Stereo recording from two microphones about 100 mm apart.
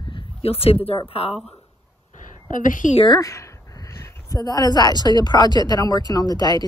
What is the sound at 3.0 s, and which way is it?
Speech, 35° left (ahead or behind).